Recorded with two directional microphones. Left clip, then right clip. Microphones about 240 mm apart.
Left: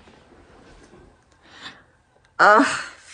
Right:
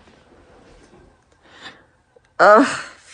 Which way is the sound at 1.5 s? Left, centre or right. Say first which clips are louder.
Even; centre.